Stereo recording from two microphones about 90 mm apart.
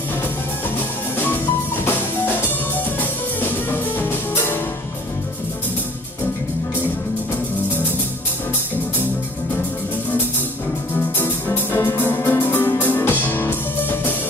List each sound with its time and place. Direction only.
3.0 s music: 20° left (ahead or behind)
11.1 s music: 25° left (ahead or behind)
12.1 s music: 20° left (ahead or behind)